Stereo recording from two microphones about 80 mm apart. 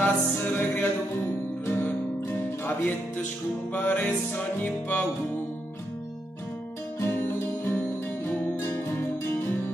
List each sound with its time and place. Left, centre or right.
0.0 s music: left
7.0 s music: left